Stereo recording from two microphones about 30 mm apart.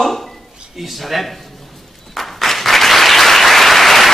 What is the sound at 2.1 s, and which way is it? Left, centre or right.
Applause, centre.